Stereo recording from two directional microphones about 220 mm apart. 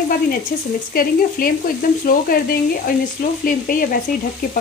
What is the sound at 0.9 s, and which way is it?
Speech, 40° left (ahead or behind).